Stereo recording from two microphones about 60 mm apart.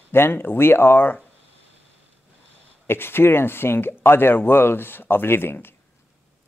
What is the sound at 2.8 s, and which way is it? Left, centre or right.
Speech, left.